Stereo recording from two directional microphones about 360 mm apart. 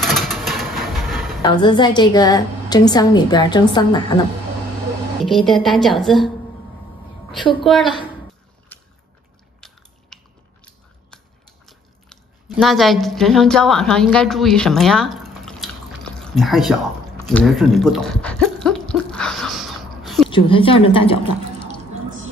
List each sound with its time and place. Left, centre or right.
0.0 s vehicle: centre
1.4 s a woman's voice: centre
5.2 s a woman's voice: centre
7.5 s a woman's voice: centre
8.7 s biting: centre
11.6 s chewing: centre
17.3 s speech: centre
20.2 s a woman's voice: centre